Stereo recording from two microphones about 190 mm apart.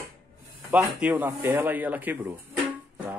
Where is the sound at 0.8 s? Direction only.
10° right (ahead or behind).